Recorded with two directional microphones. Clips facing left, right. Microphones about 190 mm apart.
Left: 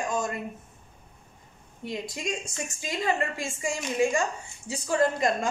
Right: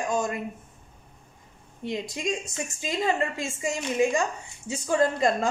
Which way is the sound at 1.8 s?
20° right (ahead or behind).